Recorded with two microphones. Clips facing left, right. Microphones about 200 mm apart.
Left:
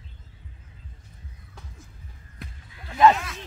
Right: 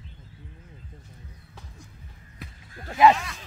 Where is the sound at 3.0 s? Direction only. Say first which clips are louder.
Even; centre (ahead or behind).